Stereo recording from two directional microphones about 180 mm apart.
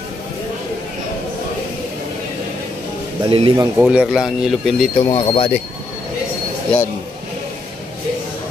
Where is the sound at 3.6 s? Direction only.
10° right (ahead or behind).